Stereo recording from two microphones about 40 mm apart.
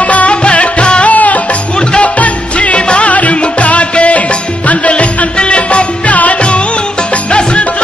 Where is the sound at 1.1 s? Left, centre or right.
Left.